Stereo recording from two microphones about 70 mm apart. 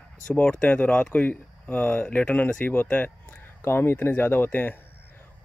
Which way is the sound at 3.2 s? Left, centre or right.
Left.